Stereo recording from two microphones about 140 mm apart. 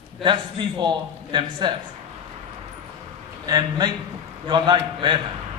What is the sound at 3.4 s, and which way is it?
A man's voice, 30° right (ahead or behind).